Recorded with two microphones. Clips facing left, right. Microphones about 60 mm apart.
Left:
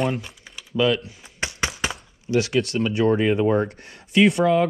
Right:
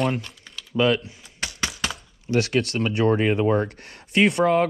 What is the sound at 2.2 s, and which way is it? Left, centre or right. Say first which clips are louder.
Speech: left 1 dB; right.